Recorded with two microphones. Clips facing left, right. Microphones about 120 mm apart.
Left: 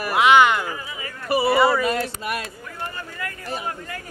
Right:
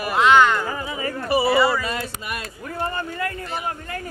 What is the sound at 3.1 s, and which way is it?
Speech, 35° right (ahead or behind).